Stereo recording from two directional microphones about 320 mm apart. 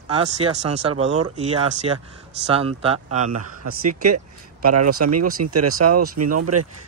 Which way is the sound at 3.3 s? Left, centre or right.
Right.